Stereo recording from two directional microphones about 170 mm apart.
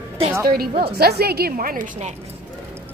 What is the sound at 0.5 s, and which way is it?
A woman's voice, 65° right (ahead or behind).